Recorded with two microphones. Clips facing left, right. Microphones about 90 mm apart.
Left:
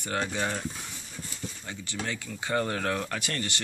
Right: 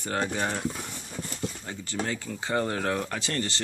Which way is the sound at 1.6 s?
35° right (ahead or behind).